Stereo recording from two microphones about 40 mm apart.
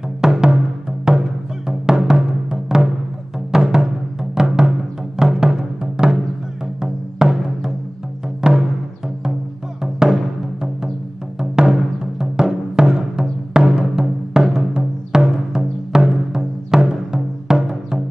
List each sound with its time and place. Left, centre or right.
0.2 s music: centre
8.4 s music: centre
9.9 s music: centre